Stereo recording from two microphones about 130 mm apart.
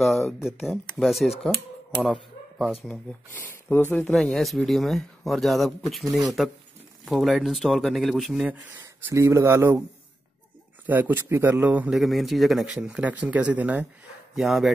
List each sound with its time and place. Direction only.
0.0 s speech: centre (ahead or behind)
2.6 s speech: centre (ahead or behind)
2.9 s speech: 15° left (ahead or behind)
4.0 s speech: 5° left (ahead or behind)
6.0 s speech: 30° right (ahead or behind)
7.1 s speech: centre (ahead or behind)
9.0 s speech: 20° right (ahead or behind)
10.9 s speech: 15° right (ahead or behind)
12.0 s speech: centre (ahead or behind)